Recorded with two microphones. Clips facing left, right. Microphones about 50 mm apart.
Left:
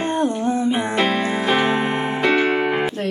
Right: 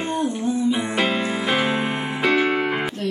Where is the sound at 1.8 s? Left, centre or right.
Centre.